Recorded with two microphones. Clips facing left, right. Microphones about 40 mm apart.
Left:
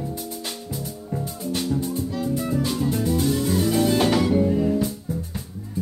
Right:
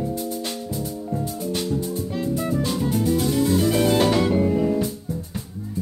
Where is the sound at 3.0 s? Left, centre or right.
Centre.